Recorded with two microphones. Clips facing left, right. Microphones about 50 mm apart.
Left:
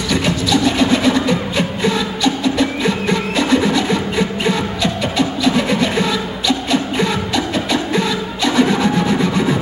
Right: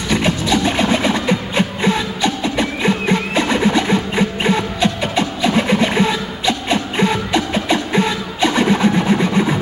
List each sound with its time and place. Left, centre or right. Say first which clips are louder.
0.1 s music: even; right